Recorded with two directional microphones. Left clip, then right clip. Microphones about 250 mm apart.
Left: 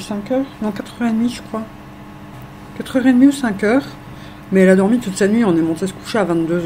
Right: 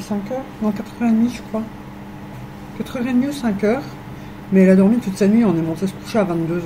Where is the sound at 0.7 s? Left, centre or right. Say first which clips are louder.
Right 1 dB; left.